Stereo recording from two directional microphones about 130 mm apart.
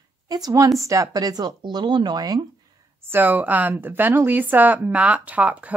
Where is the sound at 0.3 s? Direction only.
30° right (ahead or behind).